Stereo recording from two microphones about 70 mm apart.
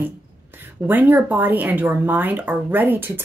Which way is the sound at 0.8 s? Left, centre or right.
Right.